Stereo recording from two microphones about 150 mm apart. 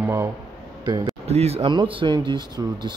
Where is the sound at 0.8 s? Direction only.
25° right (ahead or behind).